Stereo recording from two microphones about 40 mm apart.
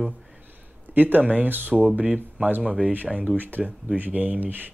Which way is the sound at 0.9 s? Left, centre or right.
Right.